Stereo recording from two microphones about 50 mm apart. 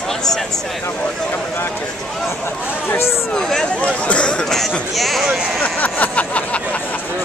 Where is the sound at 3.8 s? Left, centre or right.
Left.